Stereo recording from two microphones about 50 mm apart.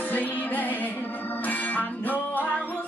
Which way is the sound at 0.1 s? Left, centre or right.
Left.